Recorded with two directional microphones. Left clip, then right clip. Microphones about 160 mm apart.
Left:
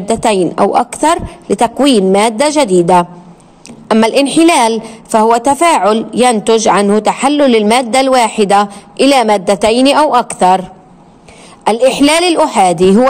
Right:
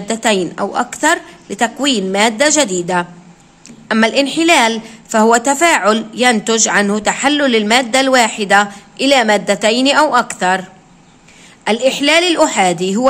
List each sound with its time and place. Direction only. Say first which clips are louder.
0.0 s a woman's voice: left 4 dB; 25° left (ahead or behind)